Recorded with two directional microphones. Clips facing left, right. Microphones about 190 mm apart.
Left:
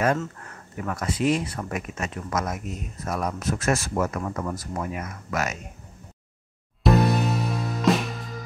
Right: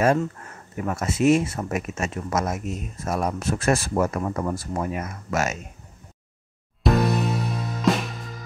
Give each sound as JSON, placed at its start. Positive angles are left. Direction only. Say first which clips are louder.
{"t": 0.2, "sound": "speech", "louder": "right 5 dB", "side_deg": -25}
{"t": 6.8, "sound": "music", "louder": "left 1 dB", "side_deg": 0}